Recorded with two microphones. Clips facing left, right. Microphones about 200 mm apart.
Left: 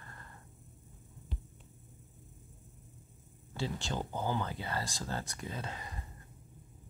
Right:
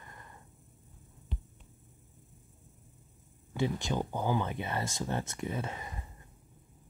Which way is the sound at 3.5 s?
15° right (ahead or behind).